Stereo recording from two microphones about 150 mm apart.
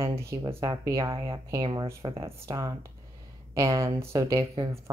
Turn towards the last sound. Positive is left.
turn(degrees=-40)  # may be behind; listen again after turning